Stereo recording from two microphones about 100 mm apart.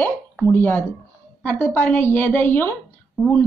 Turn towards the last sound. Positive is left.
turn(degrees=0)  # may be behind; listen again after turning